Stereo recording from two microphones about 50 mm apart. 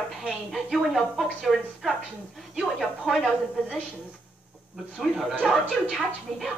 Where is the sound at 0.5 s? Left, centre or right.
Centre.